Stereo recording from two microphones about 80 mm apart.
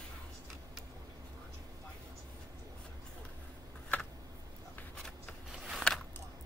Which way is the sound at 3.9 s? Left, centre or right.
Centre.